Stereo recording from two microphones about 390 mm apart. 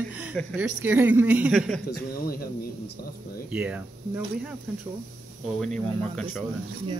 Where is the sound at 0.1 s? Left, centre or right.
Centre.